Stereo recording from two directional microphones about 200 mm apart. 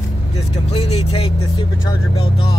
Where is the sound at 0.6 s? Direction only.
30° left (ahead or behind).